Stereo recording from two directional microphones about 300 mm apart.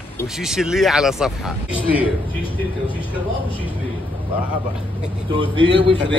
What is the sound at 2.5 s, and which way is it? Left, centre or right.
Speech, centre.